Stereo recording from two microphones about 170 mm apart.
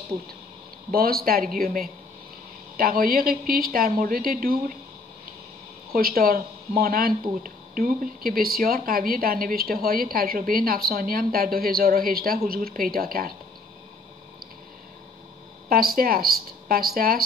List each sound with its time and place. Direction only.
0.9 s speech: 60° right (ahead or behind)
5.9 s speech: 60° right (ahead or behind)
15.7 s speech: 60° right (ahead or behind)